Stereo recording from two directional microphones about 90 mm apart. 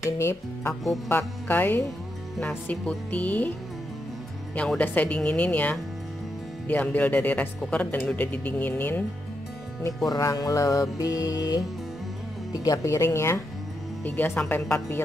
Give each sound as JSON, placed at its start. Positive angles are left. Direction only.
{"t": 0.2, "sound": "music", "side_deg": 30}
{"t": 2.4, "sound": "speech", "side_deg": 15}
{"t": 4.6, "sound": "speech", "side_deg": 15}
{"t": 10.0, "sound": "music", "side_deg": 40}
{"t": 12.5, "sound": "speech", "side_deg": 45}
{"t": 14.0, "sound": "music", "side_deg": 20}